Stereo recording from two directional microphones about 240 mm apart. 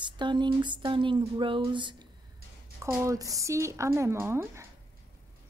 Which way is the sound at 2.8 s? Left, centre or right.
Centre.